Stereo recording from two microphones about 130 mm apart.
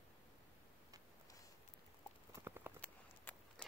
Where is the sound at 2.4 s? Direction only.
15° right (ahead or behind).